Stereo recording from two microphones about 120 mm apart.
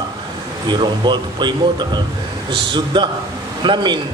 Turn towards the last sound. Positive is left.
turn(degrees=-40)  # may be behind; listen again after turning